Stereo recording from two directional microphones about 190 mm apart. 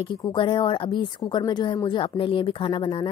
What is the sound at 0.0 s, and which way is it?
Speech, 25° left (ahead or behind).